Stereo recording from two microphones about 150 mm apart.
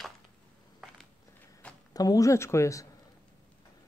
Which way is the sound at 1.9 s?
25° left (ahead or behind).